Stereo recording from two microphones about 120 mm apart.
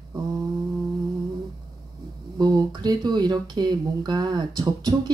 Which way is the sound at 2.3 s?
35° right (ahead or behind).